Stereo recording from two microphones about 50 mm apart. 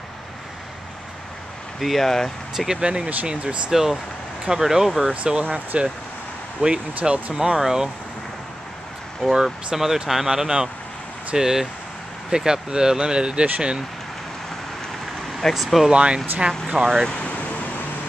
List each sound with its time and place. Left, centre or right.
1.8 s speech: centre
2.5 s speech: centre
2.8 s speech: right
3.7 s speech: centre
5.1 s speech: right
6.6 s speech: right
7.3 s speech: centre
9.3 s speech: centre
15.5 s speech: centre
15.9 s speech: right
16.7 s speech: centre
17.1 s speech: left